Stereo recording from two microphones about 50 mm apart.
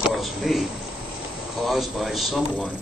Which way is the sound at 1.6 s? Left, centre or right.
Centre.